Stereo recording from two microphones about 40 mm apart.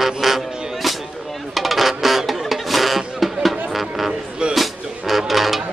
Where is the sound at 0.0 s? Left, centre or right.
Centre.